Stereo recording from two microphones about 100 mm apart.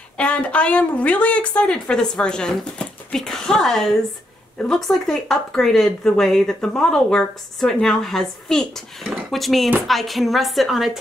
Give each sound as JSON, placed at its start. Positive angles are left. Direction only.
{"t": 0.2, "sound": "a woman's voice", "side_deg": 10}